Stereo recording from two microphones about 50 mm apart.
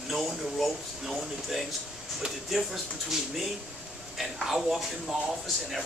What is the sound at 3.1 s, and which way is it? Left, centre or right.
A man's voice, centre.